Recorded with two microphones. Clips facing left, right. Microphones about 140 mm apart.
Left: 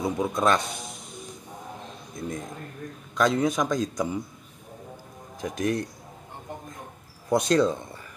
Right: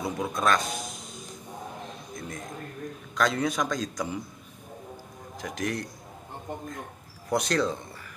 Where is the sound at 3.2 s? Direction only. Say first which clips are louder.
Left 3 dB; 20° left (ahead or behind).